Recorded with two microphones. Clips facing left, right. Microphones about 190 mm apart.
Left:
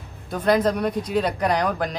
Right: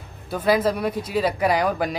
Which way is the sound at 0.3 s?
5° right (ahead or behind).